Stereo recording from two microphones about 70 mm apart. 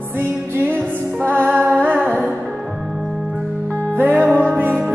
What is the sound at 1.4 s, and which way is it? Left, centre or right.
Music, right.